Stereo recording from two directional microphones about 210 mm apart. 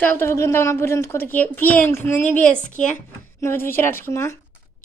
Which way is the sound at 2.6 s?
35° left (ahead or behind).